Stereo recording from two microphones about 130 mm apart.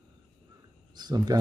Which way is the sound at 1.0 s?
30° right (ahead or behind).